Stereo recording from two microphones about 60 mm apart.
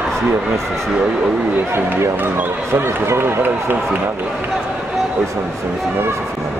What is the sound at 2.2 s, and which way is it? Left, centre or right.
Speech, right.